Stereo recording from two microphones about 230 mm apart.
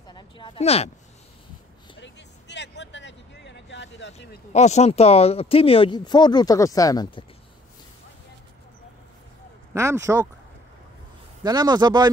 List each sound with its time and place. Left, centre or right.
0.1 s a sound: left
2.0 s vehicle: left
4.5 s speech: left
9.8 s speech: centre
11.4 s speech: centre